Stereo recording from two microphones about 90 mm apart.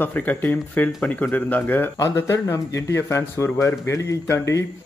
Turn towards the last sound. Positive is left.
turn(degrees=35)  # may be behind; listen again after turning